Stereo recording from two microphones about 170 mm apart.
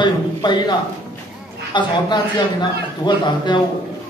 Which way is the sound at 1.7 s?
25° left (ahead or behind).